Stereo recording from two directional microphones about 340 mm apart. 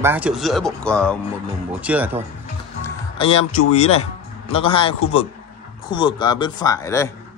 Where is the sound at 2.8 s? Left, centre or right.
Centre.